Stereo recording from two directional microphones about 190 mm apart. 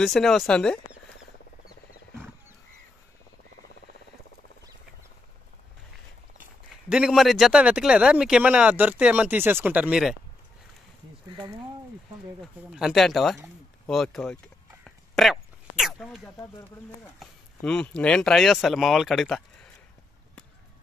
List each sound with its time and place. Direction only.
0.0 s speech: centre (ahead or behind)
6.9 s speech: 5° right (ahead or behind)
12.7 s speech: centre (ahead or behind)
14.9 s a sound: centre (ahead or behind)
16.3 s speech: 15° left (ahead or behind)
17.2 s speech: 5° left (ahead or behind)